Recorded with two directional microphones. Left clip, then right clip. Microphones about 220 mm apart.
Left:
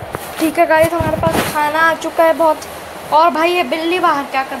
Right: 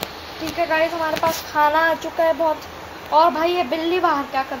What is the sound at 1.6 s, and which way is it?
A woman's voice, 25° left (ahead or behind).